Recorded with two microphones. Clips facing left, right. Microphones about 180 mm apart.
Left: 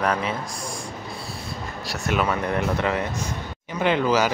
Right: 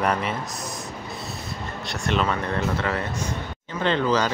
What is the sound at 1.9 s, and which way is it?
Speech, 10° left (ahead or behind).